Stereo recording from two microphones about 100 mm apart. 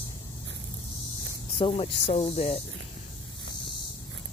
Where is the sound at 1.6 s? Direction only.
70° left (ahead or behind); by 2.6 s 90° left.